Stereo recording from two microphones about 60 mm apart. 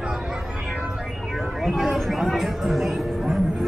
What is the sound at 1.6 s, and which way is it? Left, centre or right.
Speech, centre.